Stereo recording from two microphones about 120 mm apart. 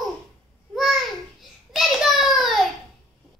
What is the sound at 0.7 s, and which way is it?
Babbling, centre (ahead or behind).